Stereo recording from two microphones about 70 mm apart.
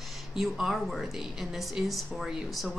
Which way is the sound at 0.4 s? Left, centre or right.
Centre.